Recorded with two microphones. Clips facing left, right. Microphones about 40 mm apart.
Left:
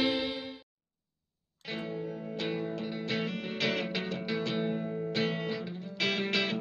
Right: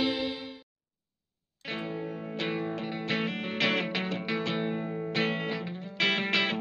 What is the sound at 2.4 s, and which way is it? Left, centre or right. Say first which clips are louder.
Music: right 2 dB; right.